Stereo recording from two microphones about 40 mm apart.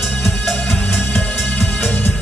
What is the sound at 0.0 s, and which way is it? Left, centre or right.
Music, centre.